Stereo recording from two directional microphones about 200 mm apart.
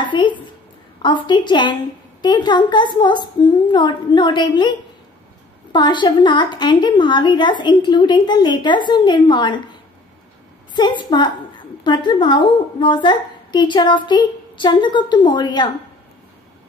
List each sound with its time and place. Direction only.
0.0 s a woman's voice: 25° left (ahead or behind)
10.8 s a woman's voice: 20° left (ahead or behind)